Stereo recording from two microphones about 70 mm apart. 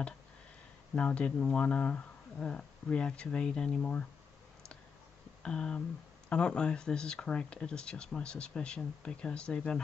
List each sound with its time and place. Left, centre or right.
0.9 s speech: centre
5.4 s speech: centre